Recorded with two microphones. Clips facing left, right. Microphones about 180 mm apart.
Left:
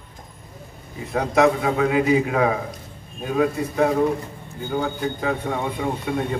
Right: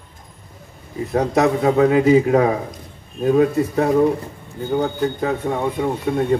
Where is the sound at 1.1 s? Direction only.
35° right (ahead or behind).